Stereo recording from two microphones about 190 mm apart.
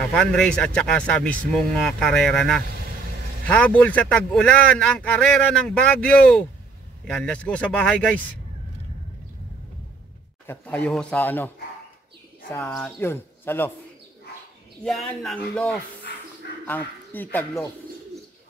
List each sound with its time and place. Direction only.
0.1 s speech: 5° left (ahead or behind)
10.4 s speech: 10° left (ahead or behind)
14.8 s speech: centre (ahead or behind)
16.1 s dog: 60° left (ahead or behind)
16.6 s speech: 10° left (ahead or behind)